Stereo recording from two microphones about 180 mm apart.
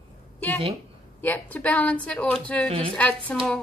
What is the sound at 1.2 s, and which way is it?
A woman's voice, 10° left (ahead or behind).